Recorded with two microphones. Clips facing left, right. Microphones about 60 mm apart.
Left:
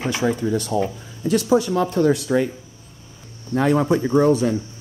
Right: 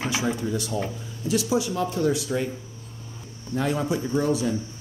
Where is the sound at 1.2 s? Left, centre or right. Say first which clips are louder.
Left 6 dB; left.